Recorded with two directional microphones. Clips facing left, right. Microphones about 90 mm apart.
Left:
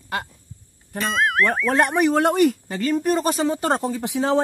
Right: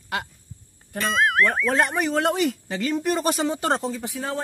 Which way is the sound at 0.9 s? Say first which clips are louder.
Even; centre (ahead or behind).